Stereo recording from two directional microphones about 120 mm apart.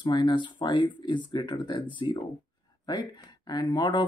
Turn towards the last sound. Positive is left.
turn(degrees=40)  # may be behind; listen again after turning